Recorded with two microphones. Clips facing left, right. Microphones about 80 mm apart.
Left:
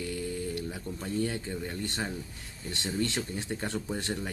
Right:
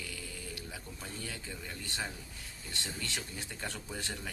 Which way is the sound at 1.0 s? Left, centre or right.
Left.